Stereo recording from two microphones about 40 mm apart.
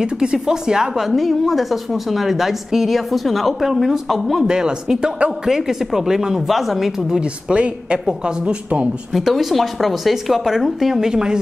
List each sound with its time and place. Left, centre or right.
0.0 s speech: centre
1.0 s a woman's voice: centre
3.6 s a woman's voice: centre
4.4 s speech: centre
7.0 s a woman's voice: centre
9.1 s a woman's voice: centre